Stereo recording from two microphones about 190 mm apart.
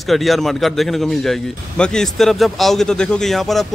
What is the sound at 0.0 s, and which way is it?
A man's voice, centre (ahead or behind).